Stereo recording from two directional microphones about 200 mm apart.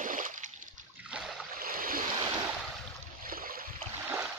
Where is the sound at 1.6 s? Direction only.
45° right (ahead or behind).